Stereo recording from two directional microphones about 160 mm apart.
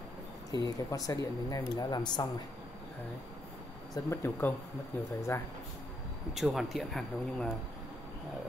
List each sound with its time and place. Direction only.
0.5 s speech: 25° left (ahead or behind)
3.9 s speech: 15° left (ahead or behind)
6.3 s speech: centre (ahead or behind)